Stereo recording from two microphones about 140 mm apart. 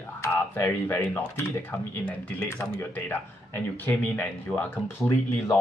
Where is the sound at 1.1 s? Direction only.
15° left (ahead or behind).